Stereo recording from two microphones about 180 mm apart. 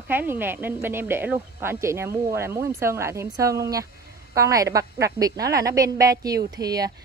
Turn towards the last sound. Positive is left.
turn(degrees=-20)  # may be behind; listen again after turning